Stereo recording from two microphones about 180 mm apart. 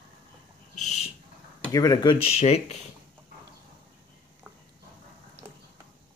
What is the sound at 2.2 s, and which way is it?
Speech, 35° left (ahead or behind).